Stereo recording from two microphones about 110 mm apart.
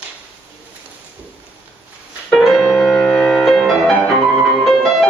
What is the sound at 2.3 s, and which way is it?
Music, centre (ahead or behind).